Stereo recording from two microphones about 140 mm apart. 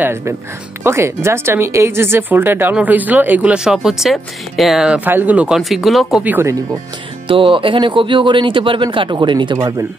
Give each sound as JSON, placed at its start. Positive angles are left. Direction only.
{"t": 0.0, "sound": "speech", "side_deg": -15}
{"t": 6.2, "sound": "speech", "side_deg": -15}
{"t": 7.2, "sound": "speech", "side_deg": -40}